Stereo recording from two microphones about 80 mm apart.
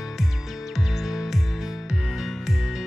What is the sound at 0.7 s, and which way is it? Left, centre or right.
Music, centre.